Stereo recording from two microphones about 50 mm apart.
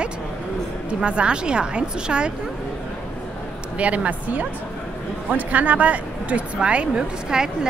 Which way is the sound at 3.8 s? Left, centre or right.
Right.